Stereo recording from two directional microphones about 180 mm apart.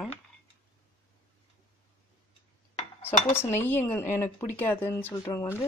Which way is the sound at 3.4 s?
10° left (ahead or behind).